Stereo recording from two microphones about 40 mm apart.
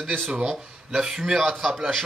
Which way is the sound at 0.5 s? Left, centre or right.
Centre.